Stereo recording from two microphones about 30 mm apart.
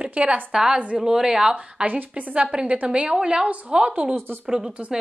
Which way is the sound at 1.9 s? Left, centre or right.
Right.